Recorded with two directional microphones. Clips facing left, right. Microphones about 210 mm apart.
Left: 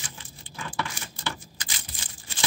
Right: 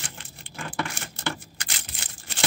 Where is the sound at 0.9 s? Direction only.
65° right (ahead or behind).